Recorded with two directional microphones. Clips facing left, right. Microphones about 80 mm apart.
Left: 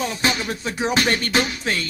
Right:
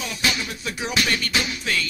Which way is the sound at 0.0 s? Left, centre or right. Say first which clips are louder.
Left 4 dB; left.